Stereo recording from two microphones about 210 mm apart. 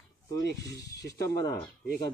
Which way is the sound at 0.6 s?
15° left (ahead or behind).